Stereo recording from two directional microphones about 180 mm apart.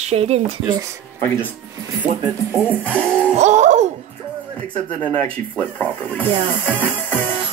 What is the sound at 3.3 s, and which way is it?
Laughter, 40° right (ahead or behind).